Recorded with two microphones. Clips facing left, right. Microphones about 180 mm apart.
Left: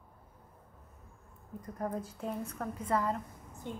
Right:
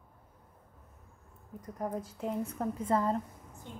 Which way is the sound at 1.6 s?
15° right (ahead or behind).